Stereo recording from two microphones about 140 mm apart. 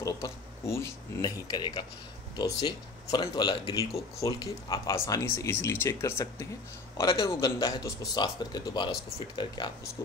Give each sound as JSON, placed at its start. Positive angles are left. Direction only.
{"t": 0.0, "sound": "speech", "side_deg": 20}